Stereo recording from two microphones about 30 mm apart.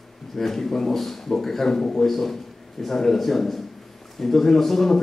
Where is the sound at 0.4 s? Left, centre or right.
Centre.